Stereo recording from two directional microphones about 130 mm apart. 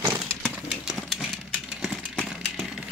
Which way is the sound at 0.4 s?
5° left (ahead or behind).